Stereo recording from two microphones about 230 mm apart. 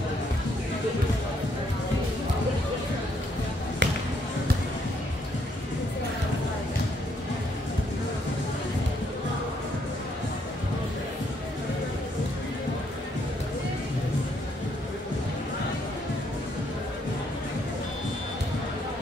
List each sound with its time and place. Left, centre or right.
3.8 s music: right